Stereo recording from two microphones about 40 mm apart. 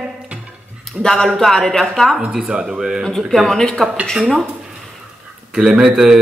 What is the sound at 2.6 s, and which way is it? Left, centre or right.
Speech, centre.